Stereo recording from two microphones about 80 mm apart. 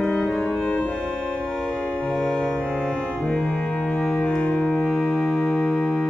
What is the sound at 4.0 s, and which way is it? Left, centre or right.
Music, centre.